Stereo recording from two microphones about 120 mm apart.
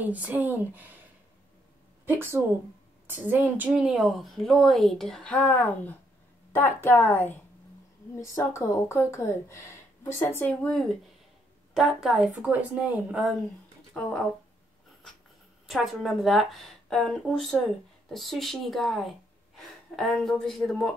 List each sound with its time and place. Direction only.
0.0 s speech: 15° right (ahead or behind)
2.0 s a woman's voice: 20° right (ahead or behind); by 7.3 s 15° left (ahead or behind)
8.2 s speech: 25° left (ahead or behind)
10.5 s a woman's voice: 5° left (ahead or behind)
11.7 s a woman's voice: 5° right (ahead or behind)
13.9 s a woman's voice: 10° left (ahead or behind)
15.6 s a woman's voice: centre (ahead or behind)